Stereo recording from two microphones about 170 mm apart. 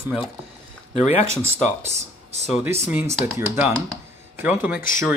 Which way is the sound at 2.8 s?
10° right (ahead or behind).